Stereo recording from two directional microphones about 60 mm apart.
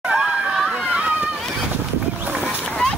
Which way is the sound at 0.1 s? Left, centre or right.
Centre.